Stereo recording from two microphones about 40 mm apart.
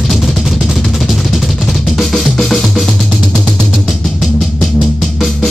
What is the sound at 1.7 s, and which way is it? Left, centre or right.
Drum, centre.